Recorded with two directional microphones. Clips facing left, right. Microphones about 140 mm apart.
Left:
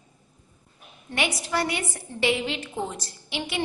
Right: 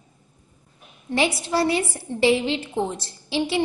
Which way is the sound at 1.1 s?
30° right (ahead or behind).